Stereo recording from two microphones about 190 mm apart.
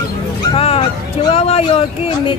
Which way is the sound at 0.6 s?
30° left (ahead or behind).